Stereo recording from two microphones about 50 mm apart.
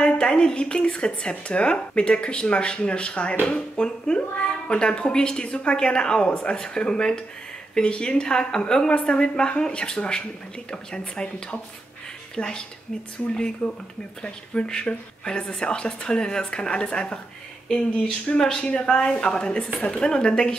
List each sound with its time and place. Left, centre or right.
0.0 s a woman's voice: centre
18.3 s a woman's voice: left